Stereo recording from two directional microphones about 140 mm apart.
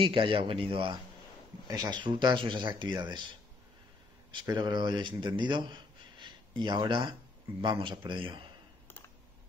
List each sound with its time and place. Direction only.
0.0 s speech: 40° right (ahead or behind)
4.3 s speech: 30° right (ahead or behind)